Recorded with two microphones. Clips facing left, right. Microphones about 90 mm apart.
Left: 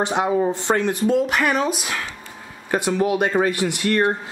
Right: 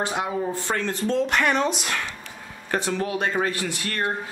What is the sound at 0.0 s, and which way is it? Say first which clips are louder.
Speech: left 6 dB; 25° left (ahead or behind).